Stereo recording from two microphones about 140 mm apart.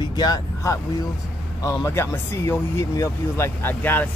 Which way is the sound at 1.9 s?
20° left (ahead or behind).